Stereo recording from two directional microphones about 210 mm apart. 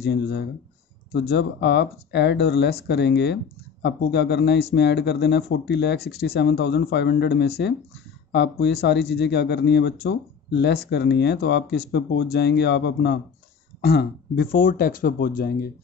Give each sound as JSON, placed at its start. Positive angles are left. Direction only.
{"t": 0.0, "sound": "speech", "side_deg": 50}